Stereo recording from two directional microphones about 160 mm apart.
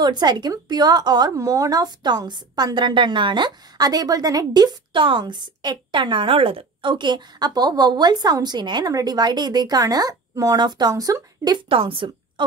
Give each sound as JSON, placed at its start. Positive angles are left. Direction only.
{"t": 0.0, "sound": "a woman's voice", "side_deg": -25}